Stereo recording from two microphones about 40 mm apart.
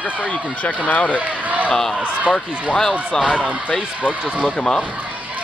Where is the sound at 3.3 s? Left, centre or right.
Left.